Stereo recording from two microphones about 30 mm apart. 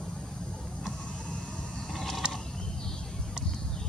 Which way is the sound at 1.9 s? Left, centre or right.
Centre.